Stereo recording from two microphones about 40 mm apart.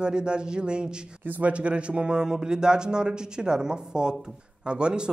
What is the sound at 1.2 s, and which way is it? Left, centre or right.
Speech, right.